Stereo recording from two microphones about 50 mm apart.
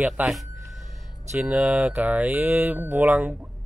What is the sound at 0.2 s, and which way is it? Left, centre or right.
Speech, right.